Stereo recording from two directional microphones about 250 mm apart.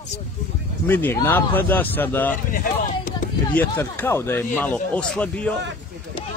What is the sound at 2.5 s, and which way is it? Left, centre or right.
Speech, left.